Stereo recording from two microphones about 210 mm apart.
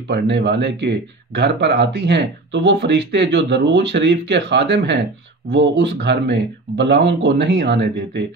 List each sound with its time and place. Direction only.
0.1 s speech: 55° right (ahead or behind)